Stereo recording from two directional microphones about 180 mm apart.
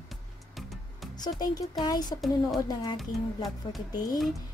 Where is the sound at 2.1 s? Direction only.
Centre (ahead or behind).